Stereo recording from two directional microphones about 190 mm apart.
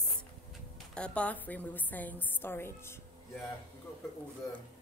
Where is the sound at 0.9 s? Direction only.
5° left (ahead or behind).